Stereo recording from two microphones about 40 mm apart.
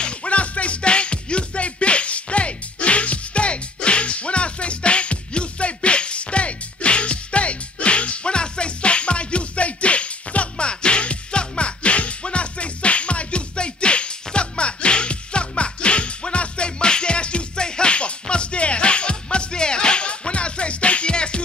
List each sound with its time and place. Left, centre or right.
0.0 s music: left